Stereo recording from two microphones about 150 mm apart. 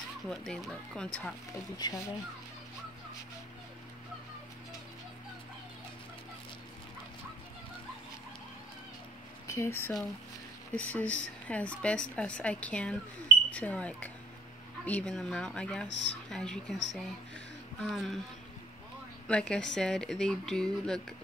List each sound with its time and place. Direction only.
0.3 s speech: 5° left (ahead or behind)
1.8 s speech: 25° left (ahead or behind)
9.5 s speech: 15° left (ahead or behind); by 18.2 s centre (ahead or behind)
19.2 s speech: 5° left (ahead or behind)